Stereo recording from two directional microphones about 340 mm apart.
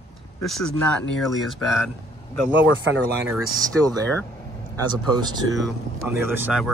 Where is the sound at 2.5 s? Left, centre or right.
Right.